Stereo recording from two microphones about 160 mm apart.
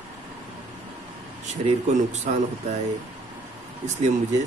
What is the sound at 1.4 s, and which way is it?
Speech, 45° right (ahead or behind).